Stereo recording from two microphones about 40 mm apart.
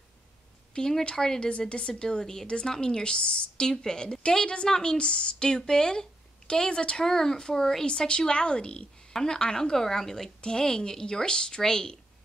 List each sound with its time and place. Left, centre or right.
0.7 s speech: centre
1.7 s speech: left
4.9 s speech: left
7.8 s speech: left